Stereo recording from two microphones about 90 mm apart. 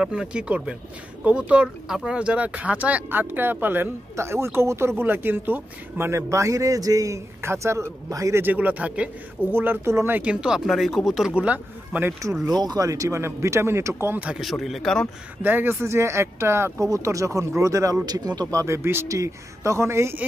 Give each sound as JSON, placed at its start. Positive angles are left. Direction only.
{"t": 0.0, "sound": "speech", "side_deg": -10}
{"t": 8.5, "sound": "speech", "side_deg": -15}
{"t": 10.1, "sound": "speech", "side_deg": -10}
{"t": 12.4, "sound": "speech", "side_deg": -50}
{"t": 14.4, "sound": "a man's voice", "side_deg": 0}
{"t": 15.4, "sound": "speech", "side_deg": -25}